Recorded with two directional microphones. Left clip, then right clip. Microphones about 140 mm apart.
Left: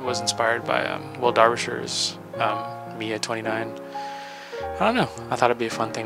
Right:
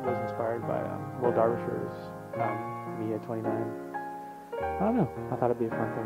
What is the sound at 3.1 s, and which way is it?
Speech, 35° right (ahead or behind).